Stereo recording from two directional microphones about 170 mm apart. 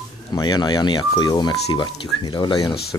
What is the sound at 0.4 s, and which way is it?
Speech, 25° left (ahead or behind).